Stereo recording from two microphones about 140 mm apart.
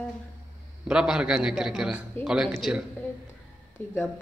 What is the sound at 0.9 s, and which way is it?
A man's voice, 5° right (ahead or behind).